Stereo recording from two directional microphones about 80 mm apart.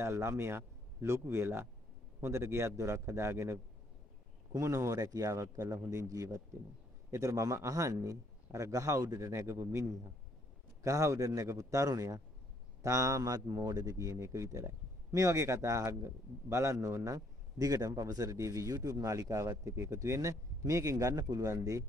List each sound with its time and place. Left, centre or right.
0.0 s a man's voice: right
9.3 s a man's voice: right